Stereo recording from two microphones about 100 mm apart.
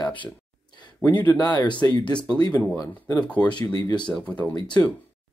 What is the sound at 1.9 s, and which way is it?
Speech, 10° left (ahead or behind).